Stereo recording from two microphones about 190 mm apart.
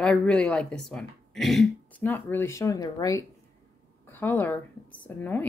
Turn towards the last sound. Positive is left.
turn(degrees=10)  # may be behind; listen again after turning